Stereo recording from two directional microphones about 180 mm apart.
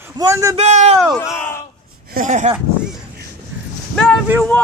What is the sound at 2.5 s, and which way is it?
Speech, 5° right (ahead or behind).